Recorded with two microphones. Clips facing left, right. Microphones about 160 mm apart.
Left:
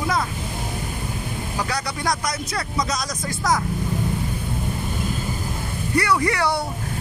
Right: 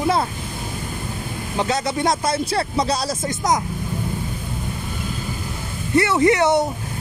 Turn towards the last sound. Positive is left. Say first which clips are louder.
# right 7 dB
turn(degrees=-20)  # may be behind; listen again after turning